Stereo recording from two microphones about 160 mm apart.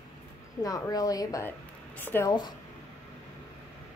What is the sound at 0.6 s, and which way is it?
A woman's voice, 20° left (ahead or behind).